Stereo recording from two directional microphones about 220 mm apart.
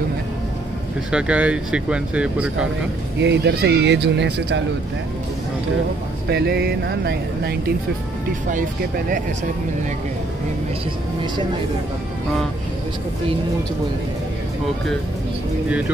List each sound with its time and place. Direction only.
1.1 s speech: 5° right (ahead or behind)
3.2 s speech: 50° right (ahead or behind)
6.2 s speech: 50° right (ahead or behind)